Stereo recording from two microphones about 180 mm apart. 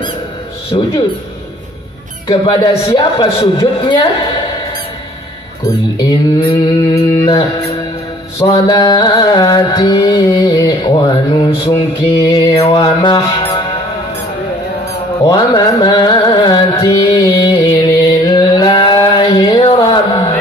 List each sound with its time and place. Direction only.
0.7 s music: 25° left (ahead or behind)
2.2 s music: 20° left (ahead or behind)
5.7 s speech: 20° left (ahead or behind)
6.6 s music: 25° left (ahead or behind)
8.4 s mantra: 30° left (ahead or behind)
8.7 s music: 20° left (ahead or behind)
15.2 s carnatic music: 20° left (ahead or behind)